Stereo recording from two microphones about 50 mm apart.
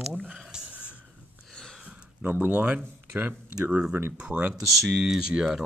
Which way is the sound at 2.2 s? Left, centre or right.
Right.